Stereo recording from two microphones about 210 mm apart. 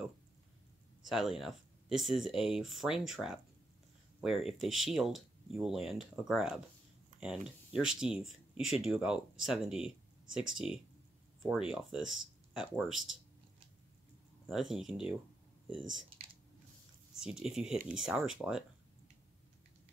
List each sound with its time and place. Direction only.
1.0 s speech: centre (ahead or behind)
14.5 s speech: centre (ahead or behind)
17.2 s speech: centre (ahead or behind)